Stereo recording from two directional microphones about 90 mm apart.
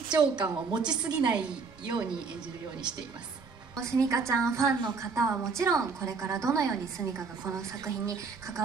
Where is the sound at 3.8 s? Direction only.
35° right (ahead or behind).